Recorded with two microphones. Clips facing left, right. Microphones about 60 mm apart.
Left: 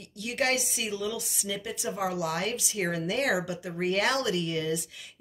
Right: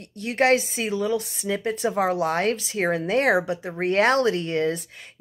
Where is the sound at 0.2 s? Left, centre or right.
Right.